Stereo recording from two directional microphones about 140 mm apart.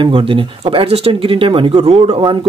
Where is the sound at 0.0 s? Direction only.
35° right (ahead or behind).